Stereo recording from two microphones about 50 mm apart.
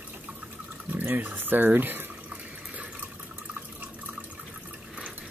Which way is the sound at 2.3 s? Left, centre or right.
Right.